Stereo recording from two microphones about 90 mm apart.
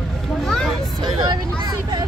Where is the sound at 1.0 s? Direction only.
50° right (ahead or behind).